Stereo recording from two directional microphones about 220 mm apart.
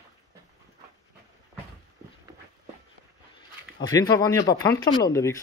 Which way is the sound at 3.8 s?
15° left (ahead or behind).